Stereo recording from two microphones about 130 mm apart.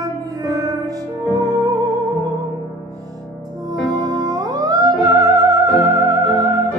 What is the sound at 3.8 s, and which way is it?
Music, 30° right (ahead or behind).